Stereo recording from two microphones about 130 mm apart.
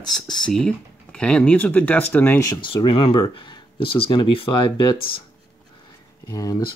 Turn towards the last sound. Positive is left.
turn(degrees=25)  # may be behind; listen again after turning